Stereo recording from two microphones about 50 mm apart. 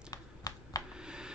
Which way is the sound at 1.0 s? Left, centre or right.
Centre.